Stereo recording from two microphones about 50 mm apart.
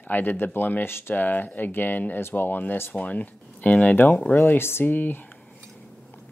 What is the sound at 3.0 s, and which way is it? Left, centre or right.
Speech, left.